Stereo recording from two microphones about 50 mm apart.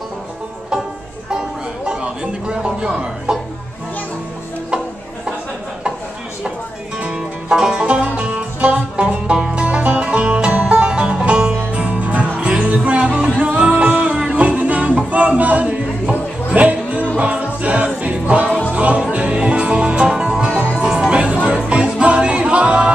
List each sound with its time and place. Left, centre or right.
1.9 s a man's voice: centre
3.3 s music: centre
4.6 s music: centre
7.0 s music: centre
11.8 s music: right